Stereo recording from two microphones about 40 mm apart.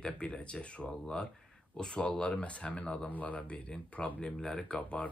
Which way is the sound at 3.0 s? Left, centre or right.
Left.